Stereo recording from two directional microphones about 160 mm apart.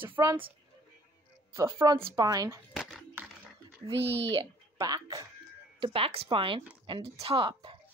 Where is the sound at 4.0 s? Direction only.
90° right.